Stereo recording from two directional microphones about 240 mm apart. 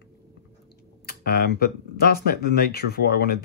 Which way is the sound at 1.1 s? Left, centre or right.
Left.